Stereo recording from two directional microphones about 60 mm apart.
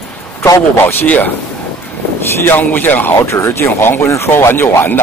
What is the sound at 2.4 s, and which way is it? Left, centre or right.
Speech, left.